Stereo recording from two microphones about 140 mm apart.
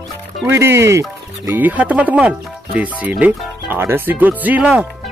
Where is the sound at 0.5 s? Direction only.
20° right (ahead or behind).